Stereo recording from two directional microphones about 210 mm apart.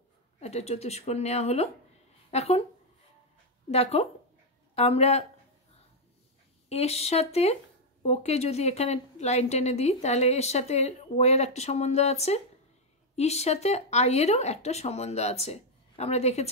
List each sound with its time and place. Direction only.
0.4 s speech: 30° left (ahead or behind)
3.7 s speech: 30° left (ahead or behind)
6.7 s speech: 30° left (ahead or behind)